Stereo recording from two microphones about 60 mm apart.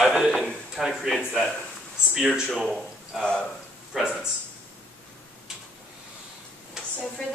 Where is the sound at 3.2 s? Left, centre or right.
Centre.